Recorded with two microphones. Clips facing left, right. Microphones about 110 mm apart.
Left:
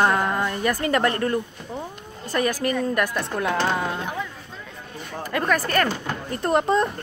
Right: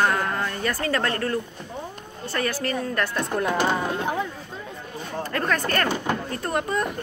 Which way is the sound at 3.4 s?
10° right (ahead or behind).